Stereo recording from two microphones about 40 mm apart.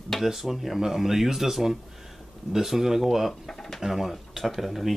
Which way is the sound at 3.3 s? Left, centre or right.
Centre.